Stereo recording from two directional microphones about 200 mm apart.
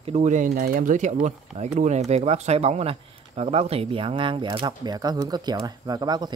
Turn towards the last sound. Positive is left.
turn(degrees=-20)  # may be behind; listen again after turning